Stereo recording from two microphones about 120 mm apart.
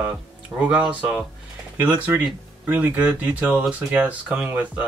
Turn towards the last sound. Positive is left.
turn(degrees=-10)  # may be behind; listen again after turning